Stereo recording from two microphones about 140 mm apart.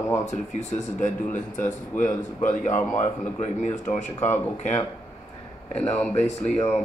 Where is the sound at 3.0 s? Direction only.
55° left (ahead or behind).